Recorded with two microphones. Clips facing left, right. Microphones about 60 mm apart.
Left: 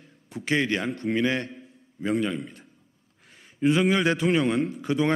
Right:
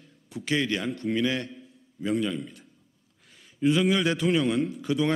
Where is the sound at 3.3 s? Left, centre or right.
Left.